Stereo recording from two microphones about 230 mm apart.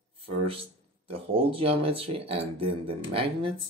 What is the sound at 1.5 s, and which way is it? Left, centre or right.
Speech, right.